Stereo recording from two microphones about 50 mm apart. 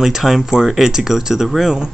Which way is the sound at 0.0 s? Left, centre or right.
Centre.